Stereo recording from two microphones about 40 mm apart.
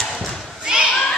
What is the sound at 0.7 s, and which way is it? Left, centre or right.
Children playing, centre.